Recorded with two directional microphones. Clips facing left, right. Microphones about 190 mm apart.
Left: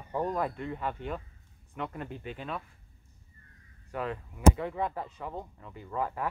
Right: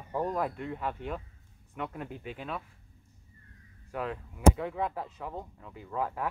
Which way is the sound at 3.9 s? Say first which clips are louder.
Left 1 dB; centre (ahead or behind).